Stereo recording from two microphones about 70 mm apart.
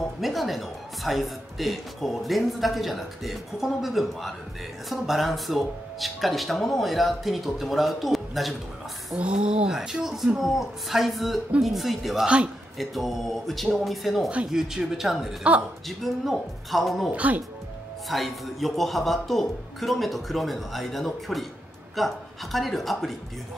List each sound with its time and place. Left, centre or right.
0.2 s speech: centre
9.1 s speech: centre
15.5 s speech: centre
16.0 s speech: centre
17.1 s speech: right
18.0 s speech: centre